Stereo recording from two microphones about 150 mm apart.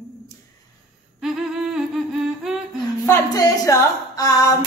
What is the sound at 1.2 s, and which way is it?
Humming, centre (ahead or behind).